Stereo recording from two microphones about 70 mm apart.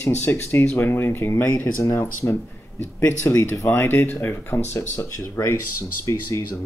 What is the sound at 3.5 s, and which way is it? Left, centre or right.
Speech, left.